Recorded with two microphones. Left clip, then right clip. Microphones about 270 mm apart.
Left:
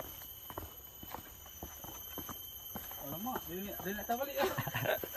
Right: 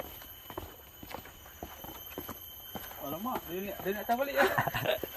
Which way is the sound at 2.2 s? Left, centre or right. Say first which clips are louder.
Right 3 dB; right.